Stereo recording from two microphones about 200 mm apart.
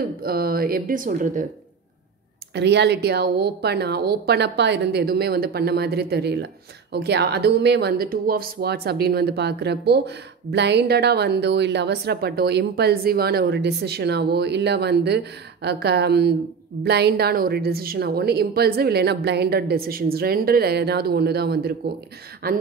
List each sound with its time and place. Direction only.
0.2 s a woman's voice: 50° right (ahead or behind)
2.5 s a woman's voice: 60° right (ahead or behind)